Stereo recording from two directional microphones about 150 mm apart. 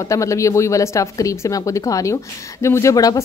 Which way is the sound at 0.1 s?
20° left (ahead or behind).